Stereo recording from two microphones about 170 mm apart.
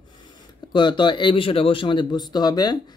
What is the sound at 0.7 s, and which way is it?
Speech, 25° left (ahead or behind).